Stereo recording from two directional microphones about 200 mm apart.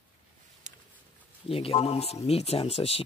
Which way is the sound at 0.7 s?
40° right (ahead or behind).